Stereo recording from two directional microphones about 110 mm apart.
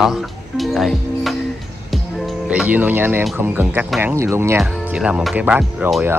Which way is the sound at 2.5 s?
15° right (ahead or behind).